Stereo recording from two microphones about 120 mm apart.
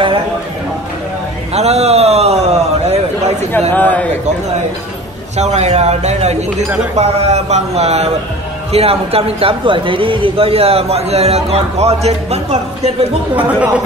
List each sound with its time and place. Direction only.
1.5 s a man's voice: 65° right (ahead or behind)
3.7 s a man's voice: 15° left (ahead or behind)
5.4 s a man's voice: 65° right (ahead or behind)
13.4 s speech: 10° right (ahead or behind)